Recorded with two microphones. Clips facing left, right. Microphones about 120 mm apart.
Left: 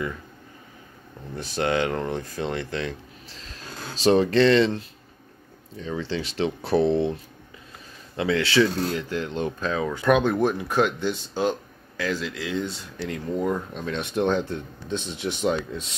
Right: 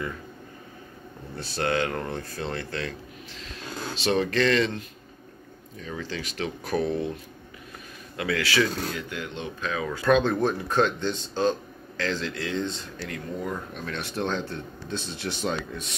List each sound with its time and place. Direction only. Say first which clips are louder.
1.3 s speech: left 2 dB; 15° left (ahead or behind)
3.3 s speech: right 3 dB; 35° left (ahead or behind)
8.2 s speech: left 4 dB; 25° left (ahead or behind)
9.9 s speech: left 1 dB; 15° left (ahead or behind)